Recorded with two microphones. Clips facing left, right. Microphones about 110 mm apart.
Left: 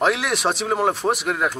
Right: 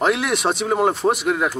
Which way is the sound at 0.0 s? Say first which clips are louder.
Right 1 dB; centre (ahead or behind).